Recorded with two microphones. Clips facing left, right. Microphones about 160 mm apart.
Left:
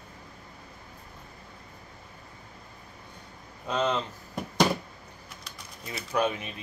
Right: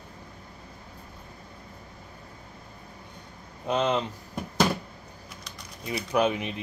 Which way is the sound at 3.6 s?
15° right (ahead or behind).